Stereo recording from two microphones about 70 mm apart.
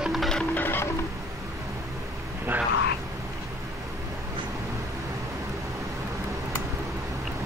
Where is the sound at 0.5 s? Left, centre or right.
Left.